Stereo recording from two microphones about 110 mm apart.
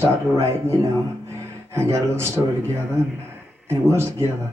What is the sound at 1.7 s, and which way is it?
A man's voice, 25° right (ahead or behind).